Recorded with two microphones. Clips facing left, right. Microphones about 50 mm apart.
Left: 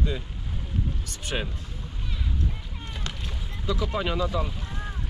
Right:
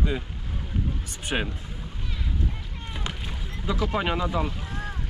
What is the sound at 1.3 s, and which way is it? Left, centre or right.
Speech, centre.